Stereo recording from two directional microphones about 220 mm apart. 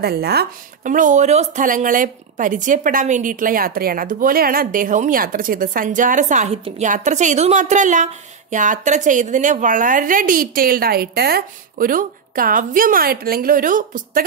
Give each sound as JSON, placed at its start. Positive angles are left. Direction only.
{"t": 0.0, "sound": "speech", "side_deg": -45}